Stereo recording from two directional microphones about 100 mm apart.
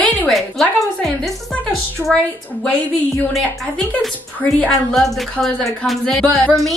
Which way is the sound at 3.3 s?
Centre (ahead or behind).